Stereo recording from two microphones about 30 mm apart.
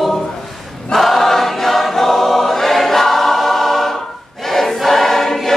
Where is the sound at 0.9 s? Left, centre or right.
Centre.